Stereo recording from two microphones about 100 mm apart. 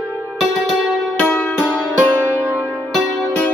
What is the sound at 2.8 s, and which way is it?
Music, centre (ahead or behind).